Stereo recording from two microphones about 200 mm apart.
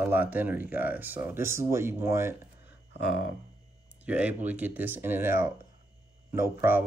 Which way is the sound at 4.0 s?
5° right (ahead or behind).